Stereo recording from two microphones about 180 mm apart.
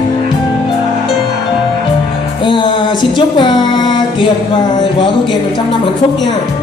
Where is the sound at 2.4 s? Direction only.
25° left (ahead or behind).